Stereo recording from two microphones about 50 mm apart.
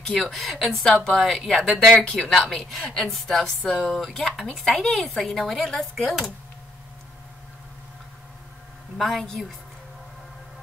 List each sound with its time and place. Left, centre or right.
0.1 s speech: centre
4.5 s speech: centre
4.9 s speech: centre
8.9 s speech: centre